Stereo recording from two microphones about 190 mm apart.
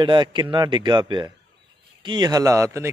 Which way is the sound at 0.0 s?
25° right (ahead or behind).